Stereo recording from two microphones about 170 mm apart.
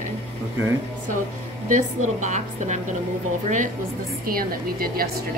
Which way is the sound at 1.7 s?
45° right (ahead or behind).